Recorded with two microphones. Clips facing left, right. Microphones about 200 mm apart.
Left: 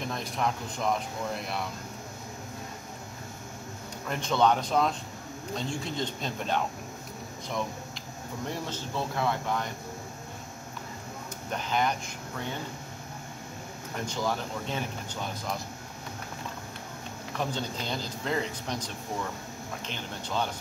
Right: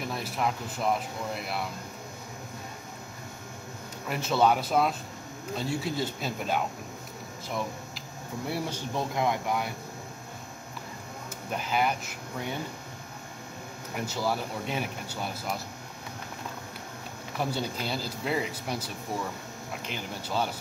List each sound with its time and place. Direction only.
0.0 s speech: 5° right (ahead or behind)
4.1 s speech: 5° right (ahead or behind)
8.5 s speech: 10° right (ahead or behind)
11.5 s speech: 10° right (ahead or behind)
13.9 s speech: 5° right (ahead or behind)
17.4 s speech: 10° right (ahead or behind)
19.9 s speech: 10° right (ahead or behind)